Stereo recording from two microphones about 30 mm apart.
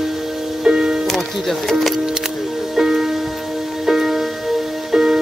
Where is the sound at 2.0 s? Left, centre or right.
Centre.